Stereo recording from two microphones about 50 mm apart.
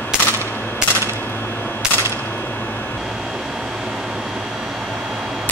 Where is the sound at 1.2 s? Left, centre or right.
Left.